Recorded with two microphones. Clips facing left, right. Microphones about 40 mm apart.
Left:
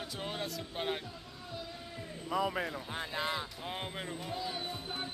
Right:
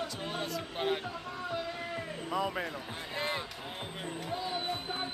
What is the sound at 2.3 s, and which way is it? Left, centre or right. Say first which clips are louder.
Speech: left 1 dB; centre.